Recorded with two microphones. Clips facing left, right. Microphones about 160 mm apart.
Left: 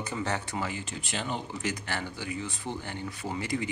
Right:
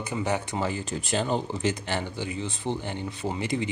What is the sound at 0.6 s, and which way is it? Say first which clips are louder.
Speech: right 5 dB; 35° right (ahead or behind).